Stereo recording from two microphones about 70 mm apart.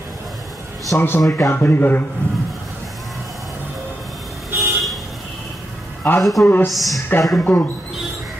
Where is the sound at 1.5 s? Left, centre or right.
Left.